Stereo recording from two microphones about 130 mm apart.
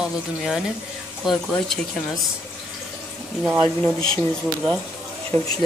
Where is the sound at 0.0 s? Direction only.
5° right (ahead or behind).